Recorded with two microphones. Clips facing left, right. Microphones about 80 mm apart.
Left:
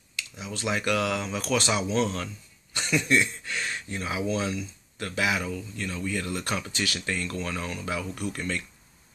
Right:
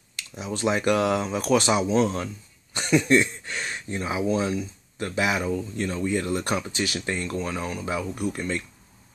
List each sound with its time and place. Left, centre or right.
0.5 s speech: right
3.1 s speech: right